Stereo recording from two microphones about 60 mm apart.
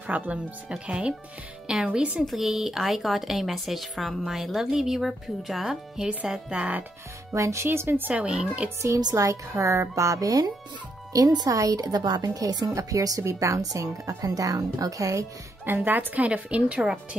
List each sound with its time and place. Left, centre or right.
0.0 s a woman's voice: right; by 6.0 s centre
6.5 s a woman's voice: centre
7.3 s speech: right
8.1 s a woman's voice: centre
8.8 s speech: right
11.1 s a woman's voice: right
15.6 s speech: right
16.3 s a woman's voice: centre